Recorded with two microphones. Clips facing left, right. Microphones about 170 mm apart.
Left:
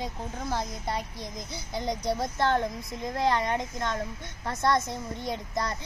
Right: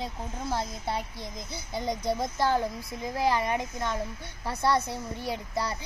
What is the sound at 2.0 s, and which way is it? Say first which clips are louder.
Speech: even; 20° right (ahead or behind).